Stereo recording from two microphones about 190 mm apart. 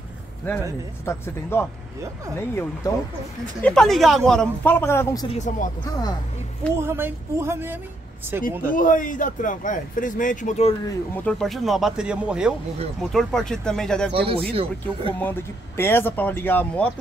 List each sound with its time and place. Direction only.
0.5 s speech: 10° left (ahead or behind)
5.3 s speech: 40° left (ahead or behind)
5.9 s speech: 20° left (ahead or behind)
6.8 s speech: 10° right (ahead or behind)
8.7 s a man's voice: 45° left (ahead or behind)
11.2 s speech: centre (ahead or behind)
14.1 s speech: 30° right (ahead or behind)
15.1 s speech: 10° left (ahead or behind)